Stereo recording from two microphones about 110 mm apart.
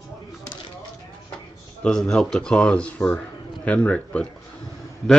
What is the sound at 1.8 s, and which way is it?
A man's voice, 5° left (ahead or behind).